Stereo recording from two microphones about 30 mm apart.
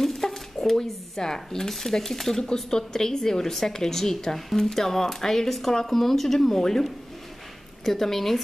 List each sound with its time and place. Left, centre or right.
0.0 s a sound: centre
0.7 s speech: centre
7.8 s speech: centre